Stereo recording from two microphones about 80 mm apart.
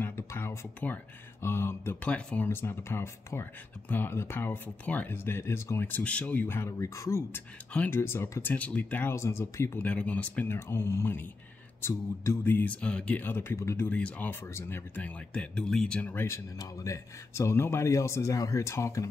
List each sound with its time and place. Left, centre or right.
0.3 s music: left
0.8 s speech: left
2.0 s speech: centre
2.4 s speech: left
9.1 s speech: left
9.8 s speech: centre
12.6 s speech: centre; by 13.8 s left
13.8 s speech: centre
16.0 s speech: left
16.5 s speech: left